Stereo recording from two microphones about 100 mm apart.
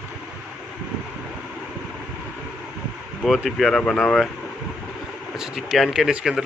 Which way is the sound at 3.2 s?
Centre (ahead or behind).